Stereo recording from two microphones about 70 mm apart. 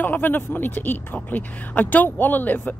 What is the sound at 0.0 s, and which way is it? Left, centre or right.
Speech, left.